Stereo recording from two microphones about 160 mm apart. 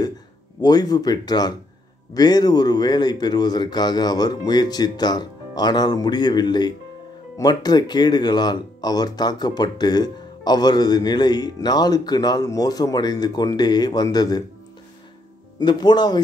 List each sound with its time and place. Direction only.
0.6 s speech: 25° left (ahead or behind)
15.6 s speech: 25° left (ahead or behind)